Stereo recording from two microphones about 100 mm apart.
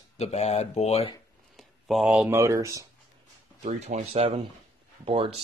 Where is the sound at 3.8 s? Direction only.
90° right.